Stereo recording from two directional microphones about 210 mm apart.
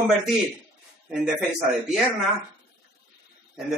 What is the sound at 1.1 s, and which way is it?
Speech, 5° right (ahead or behind).